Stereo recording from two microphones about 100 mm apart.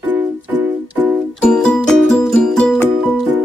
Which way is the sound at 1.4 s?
5° left (ahead or behind).